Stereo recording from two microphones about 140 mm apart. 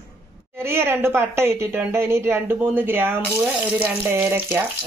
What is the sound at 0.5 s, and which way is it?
A woman's voice, 15° right (ahead or behind).